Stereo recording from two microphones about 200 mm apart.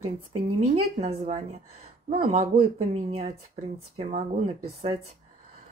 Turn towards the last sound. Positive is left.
turn(degrees=-30)  # may be behind; listen again after turning